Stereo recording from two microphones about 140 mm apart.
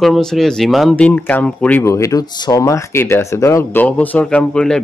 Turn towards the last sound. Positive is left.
turn(degrees=5)  # may be behind; listen again after turning